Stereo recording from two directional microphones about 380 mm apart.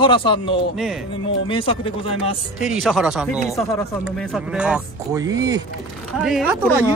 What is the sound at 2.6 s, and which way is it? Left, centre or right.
Speech, centre.